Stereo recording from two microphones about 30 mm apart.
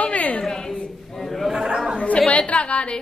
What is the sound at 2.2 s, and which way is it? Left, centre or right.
Speech, left.